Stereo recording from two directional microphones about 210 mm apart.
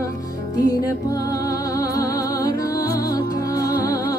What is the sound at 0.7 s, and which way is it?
Music, 15° left (ahead or behind).